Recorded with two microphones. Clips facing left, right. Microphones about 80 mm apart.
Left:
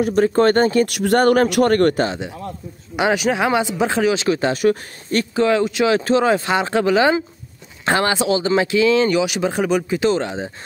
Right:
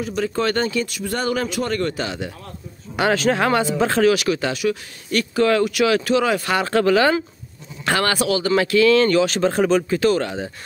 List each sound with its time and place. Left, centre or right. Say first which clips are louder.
0.0 s speech: left 7 dB; left
0.8 s speech: left 9 dB; left
3.0 s speech: even; centre; by 5.2 s left
5.3 s speech: even; left